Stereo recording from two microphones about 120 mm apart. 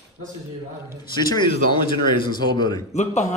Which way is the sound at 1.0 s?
35° left (ahead or behind).